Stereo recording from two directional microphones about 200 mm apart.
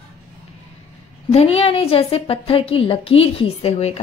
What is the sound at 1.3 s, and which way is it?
A woman's voice, 30° left (ahead or behind).